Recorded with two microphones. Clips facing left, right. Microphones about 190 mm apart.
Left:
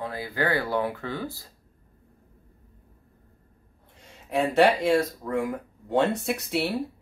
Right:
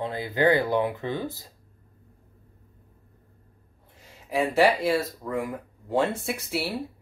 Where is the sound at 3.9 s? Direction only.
Centre (ahead or behind).